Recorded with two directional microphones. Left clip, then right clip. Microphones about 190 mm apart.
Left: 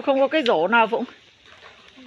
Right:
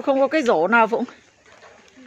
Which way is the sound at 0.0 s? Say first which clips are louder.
Right 1 dB; 20° right (ahead or behind).